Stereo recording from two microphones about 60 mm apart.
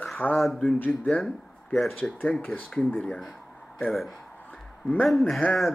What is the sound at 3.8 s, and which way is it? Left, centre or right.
Speech, centre.